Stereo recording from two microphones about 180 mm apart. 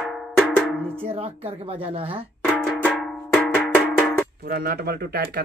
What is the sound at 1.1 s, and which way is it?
Speech, 30° right (ahead or behind).